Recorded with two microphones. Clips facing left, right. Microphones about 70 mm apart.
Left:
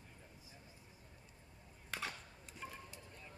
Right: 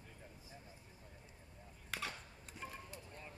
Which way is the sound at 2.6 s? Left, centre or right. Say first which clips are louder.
Right 1 dB; centre.